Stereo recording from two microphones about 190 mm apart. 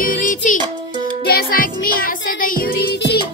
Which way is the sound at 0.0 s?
45° left (ahead or behind).